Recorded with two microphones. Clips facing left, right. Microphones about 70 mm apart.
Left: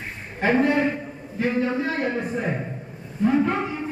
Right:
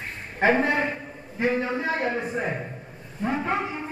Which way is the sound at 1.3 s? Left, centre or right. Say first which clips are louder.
Left 2 dB; centre.